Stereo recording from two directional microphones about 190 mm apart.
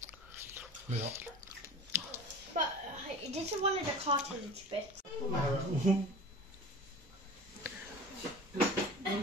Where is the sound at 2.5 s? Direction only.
40° right (ahead or behind).